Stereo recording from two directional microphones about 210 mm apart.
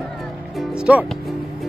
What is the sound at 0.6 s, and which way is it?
Music, 5° right (ahead or behind).